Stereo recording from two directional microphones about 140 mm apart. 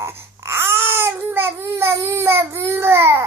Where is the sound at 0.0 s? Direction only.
20° right (ahead or behind).